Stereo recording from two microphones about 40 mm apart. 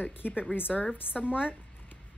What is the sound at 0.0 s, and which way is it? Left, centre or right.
Speech, left.